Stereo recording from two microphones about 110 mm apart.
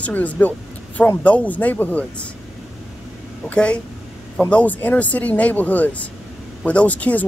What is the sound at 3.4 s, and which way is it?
Speech, 10° left (ahead or behind).